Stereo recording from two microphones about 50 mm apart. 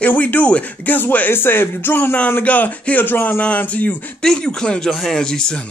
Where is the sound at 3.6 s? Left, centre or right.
Left.